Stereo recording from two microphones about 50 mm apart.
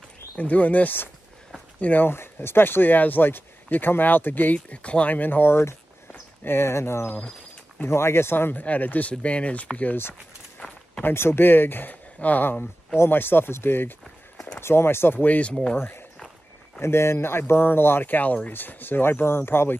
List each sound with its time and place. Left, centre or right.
0.4 s speech: left
1.8 s speech: left
2.4 s speech: left
4.6 s speech: left
5.1 s speech: left
5.5 s speech: left
8.6 s speech: left
11.1 s speech: left
13.0 s speech: left
15.1 s speech: left
15.7 s speech: left
16.8 s speech: left
18.0 s speech: left